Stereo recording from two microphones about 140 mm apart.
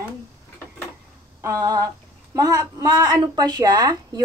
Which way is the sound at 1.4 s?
25° right (ahead or behind).